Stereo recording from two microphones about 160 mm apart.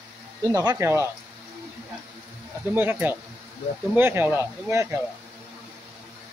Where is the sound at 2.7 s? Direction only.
10° right (ahead or behind).